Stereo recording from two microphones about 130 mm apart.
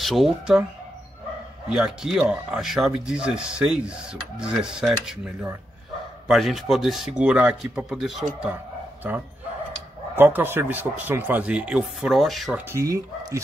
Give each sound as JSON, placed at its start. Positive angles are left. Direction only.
{"t": 0.0, "sound": "speech", "side_deg": 0}
{"t": 1.7, "sound": "speech", "side_deg": -5}
{"t": 10.1, "sound": "speech", "side_deg": -15}
{"t": 12.7, "sound": "speech", "side_deg": -25}